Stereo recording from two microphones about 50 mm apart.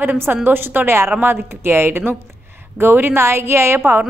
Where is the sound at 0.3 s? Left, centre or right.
Right.